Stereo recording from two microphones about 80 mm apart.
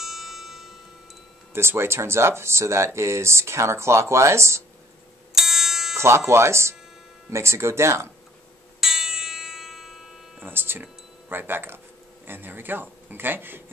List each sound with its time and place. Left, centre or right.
0.0 s music: centre
1.5 s speech: right
5.3 s music: centre
5.9 s speech: right
8.8 s music: centre
10.4 s a man's voice: right